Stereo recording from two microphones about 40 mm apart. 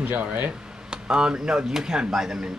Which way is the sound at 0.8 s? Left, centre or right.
Right.